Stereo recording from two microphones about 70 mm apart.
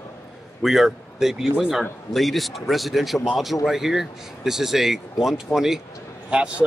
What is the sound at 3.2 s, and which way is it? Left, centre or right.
Speech, centre.